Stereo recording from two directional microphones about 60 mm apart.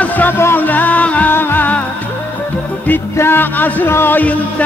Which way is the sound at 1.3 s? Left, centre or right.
Left.